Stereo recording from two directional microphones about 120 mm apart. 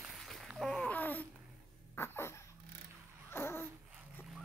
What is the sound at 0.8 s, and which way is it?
Babbling, 15° left (ahead or behind).